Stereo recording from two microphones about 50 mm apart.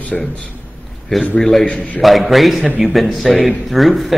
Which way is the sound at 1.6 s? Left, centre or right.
Left.